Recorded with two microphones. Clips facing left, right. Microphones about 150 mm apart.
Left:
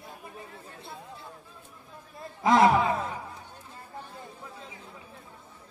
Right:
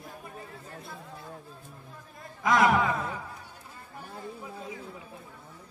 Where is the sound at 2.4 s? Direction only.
30° left (ahead or behind).